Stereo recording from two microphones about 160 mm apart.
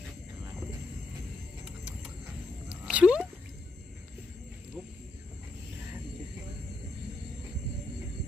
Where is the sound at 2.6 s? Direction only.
5° right (ahead or behind).